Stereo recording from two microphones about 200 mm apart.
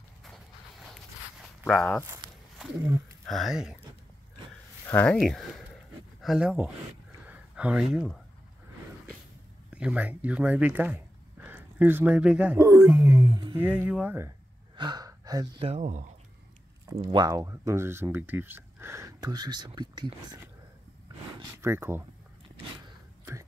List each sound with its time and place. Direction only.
0.2 s a sound: centre (ahead or behind)
3.3 s speech: centre (ahead or behind)
4.8 s speech: 10° left (ahead or behind)
7.2 s a sound: 5° right (ahead or behind)
9.7 s speech: 5° right (ahead or behind)
13.7 s speech: 10° right (ahead or behind)
14.8 s gasp: 20° right (ahead or behind)
15.6 s speech: 35° right (ahead or behind)
16.9 s speech: 25° right (ahead or behind)
21.5 s speech: 10° right (ahead or behind)